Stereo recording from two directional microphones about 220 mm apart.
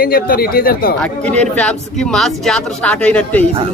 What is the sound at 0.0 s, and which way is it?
Speech, 40° left (ahead or behind).